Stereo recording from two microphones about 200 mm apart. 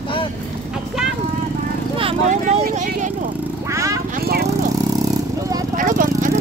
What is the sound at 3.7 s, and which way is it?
Speech, 15° right (ahead or behind).